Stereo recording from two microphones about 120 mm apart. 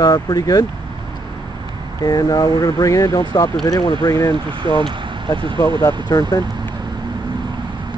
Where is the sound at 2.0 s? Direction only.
30° left (ahead or behind).